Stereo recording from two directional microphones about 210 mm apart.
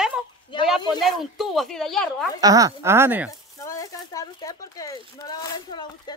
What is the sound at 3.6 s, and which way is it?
Speech, 15° left (ahead or behind).